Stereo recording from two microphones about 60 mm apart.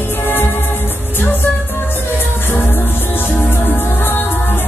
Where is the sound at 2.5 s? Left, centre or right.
Left.